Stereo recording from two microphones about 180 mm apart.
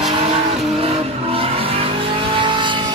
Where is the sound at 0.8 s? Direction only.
35° right (ahead or behind).